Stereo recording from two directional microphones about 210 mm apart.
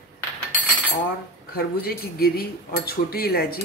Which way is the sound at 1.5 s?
45° left (ahead or behind).